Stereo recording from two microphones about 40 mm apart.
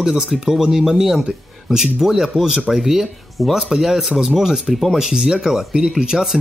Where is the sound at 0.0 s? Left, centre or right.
Centre.